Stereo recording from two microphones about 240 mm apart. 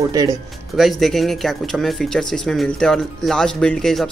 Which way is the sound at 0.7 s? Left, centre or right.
Centre.